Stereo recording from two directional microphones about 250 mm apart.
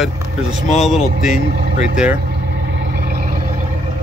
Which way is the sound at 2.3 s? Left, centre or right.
Right.